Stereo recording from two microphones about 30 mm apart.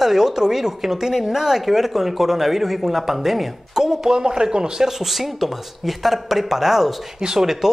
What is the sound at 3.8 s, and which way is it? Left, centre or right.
Speech, centre.